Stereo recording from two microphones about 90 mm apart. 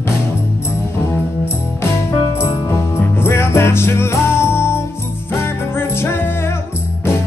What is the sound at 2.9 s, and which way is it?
Music, 30° left (ahead or behind).